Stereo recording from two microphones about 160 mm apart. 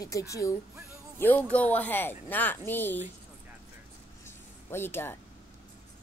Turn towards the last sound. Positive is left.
turn(degrees=15)  # may be behind; listen again after turning